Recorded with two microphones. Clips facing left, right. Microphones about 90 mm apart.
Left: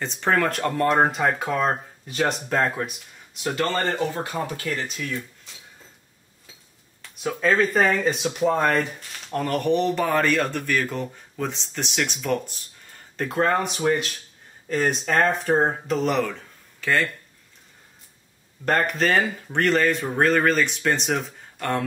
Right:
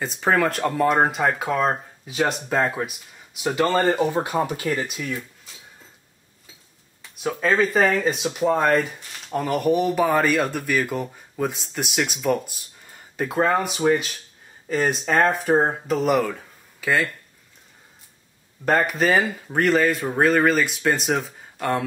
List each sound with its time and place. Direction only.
0.0 s speech: 5° right (ahead or behind)
4.1 s speech: 20° right (ahead or behind)
7.0 s speech: 5° right (ahead or behind)
18.7 s speech: 5° right (ahead or behind)